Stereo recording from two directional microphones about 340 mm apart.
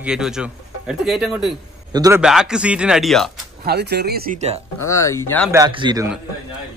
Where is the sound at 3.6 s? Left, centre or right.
Right.